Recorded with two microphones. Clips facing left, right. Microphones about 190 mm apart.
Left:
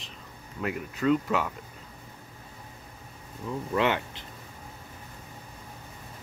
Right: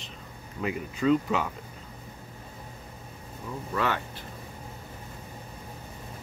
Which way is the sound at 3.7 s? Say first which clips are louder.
Left 3 dB; 20° left (ahead or behind).